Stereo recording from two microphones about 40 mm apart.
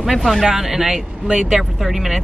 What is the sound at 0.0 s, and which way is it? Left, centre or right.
Speech, centre.